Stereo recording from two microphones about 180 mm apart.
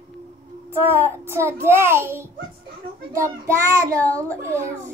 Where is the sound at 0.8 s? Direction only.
15° right (ahead or behind).